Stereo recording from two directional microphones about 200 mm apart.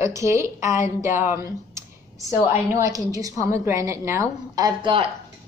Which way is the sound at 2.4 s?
15° right (ahead or behind).